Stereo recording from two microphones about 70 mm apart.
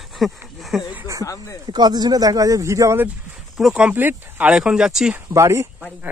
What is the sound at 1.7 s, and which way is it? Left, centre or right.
Speech, right.